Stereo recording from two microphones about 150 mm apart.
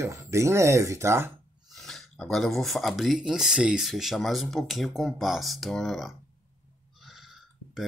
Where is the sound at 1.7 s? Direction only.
Centre (ahead or behind).